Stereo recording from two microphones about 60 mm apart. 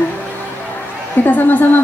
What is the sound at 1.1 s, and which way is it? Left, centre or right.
Speech, left.